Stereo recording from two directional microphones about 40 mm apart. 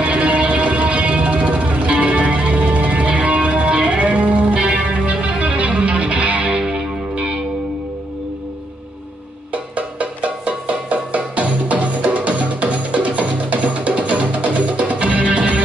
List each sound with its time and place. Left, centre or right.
0.0 s music: right
9.5 s music: right